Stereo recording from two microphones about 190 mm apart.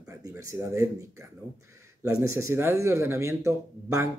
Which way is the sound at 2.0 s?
15° right (ahead or behind).